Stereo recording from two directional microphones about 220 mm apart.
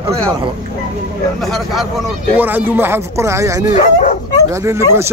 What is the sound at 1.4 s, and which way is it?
Speech, centre (ahead or behind).